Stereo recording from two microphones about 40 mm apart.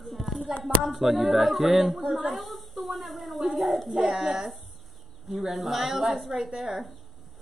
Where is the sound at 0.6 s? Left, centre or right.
Centre.